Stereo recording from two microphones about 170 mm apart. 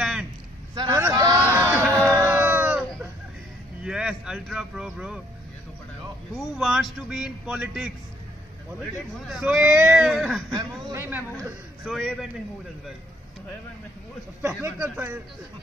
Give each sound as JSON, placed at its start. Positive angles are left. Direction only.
{"t": 0.0, "sound": "a sound", "side_deg": -5}
{"t": 0.7, "sound": "a sound", "side_deg": -15}
{"t": 3.8, "sound": "speech", "side_deg": -5}
{"t": 6.3, "sound": "a man's voice", "side_deg": 0}
{"t": 10.5, "sound": "speech", "side_deg": -25}
{"t": 11.0, "sound": "speech", "side_deg": -10}
{"t": 11.3, "sound": "a man's voice", "side_deg": 0}
{"t": 14.4, "sound": "speech", "side_deg": -15}